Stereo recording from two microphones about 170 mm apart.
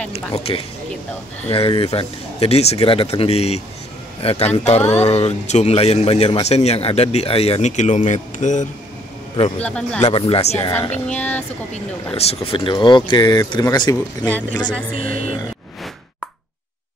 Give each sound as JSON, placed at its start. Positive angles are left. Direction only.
{"t": 0.3, "sound": "speech", "side_deg": 35}
{"t": 9.6, "sound": "speech", "side_deg": 5}
{"t": 10.0, "sound": "speech", "side_deg": 30}
{"t": 10.9, "sound": "speech", "side_deg": 10}
{"t": 11.7, "sound": "speech", "side_deg": 35}
{"t": 14.2, "sound": "speech", "side_deg": 10}
{"t": 15.0, "sound": "speech", "side_deg": -55}